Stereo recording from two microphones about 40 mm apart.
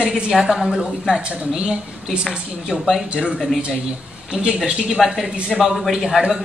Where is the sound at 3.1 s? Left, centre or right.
Right.